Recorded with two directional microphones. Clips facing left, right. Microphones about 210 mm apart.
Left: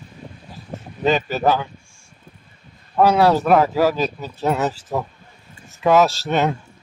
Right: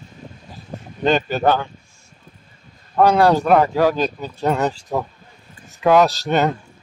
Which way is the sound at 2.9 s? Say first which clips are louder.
Right 1 dB; 5° left (ahead or behind).